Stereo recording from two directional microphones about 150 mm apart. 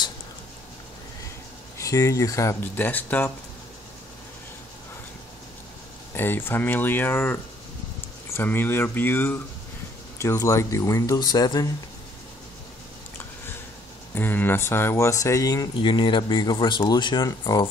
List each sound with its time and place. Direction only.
1.8 s speech: 20° left (ahead or behind)
6.1 s speech: 15° left (ahead or behind)
14.1 s speech: 15° left (ahead or behind)